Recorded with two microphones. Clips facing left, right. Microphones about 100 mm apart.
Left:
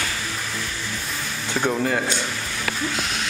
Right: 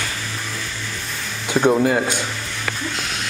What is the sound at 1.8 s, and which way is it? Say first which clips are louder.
Speech: right 5 dB; 15° right (ahead or behind).